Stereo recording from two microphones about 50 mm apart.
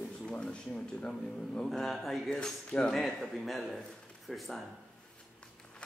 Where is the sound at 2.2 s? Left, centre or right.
Centre.